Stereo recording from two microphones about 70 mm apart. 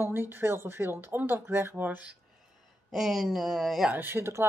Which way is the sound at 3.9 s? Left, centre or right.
Right.